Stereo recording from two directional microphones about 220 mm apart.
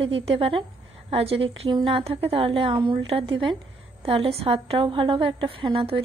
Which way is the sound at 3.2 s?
55° right (ahead or behind).